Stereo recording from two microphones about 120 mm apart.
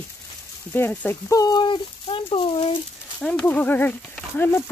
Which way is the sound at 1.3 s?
30° left (ahead or behind).